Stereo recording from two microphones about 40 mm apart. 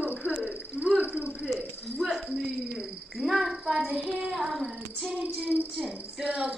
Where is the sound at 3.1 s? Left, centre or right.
Centre.